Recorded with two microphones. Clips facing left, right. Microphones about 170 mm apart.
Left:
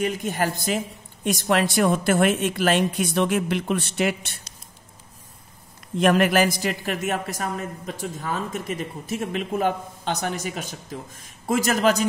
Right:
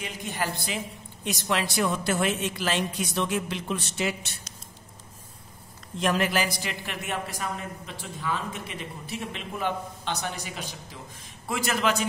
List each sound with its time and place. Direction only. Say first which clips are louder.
0.0 s a woman's voice: left 8 dB; 50° left (ahead or behind)
5.9 s a woman's voice: left 7 dB; 60° left (ahead or behind); by 12.1 s 40° left (ahead or behind)